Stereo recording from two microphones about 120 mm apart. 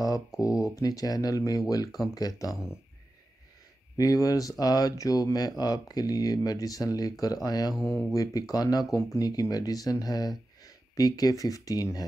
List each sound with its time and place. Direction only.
0.4 s speech: 30° left (ahead or behind)
2.5 s speech: 5° right (ahead or behind)
3.9 s speech: 30° left (ahead or behind)
7.7 s speech: 5° right (ahead or behind)
8.1 s speech: 30° left (ahead or behind)